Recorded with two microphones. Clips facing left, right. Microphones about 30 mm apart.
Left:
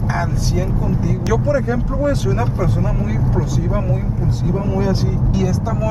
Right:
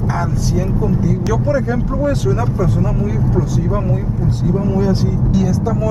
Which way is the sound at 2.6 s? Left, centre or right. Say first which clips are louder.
Right 2 dB; centre.